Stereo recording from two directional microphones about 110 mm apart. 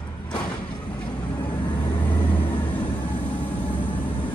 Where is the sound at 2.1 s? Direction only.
45° left (ahead or behind).